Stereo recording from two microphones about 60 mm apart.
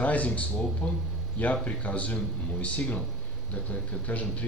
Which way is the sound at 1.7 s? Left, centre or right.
Left.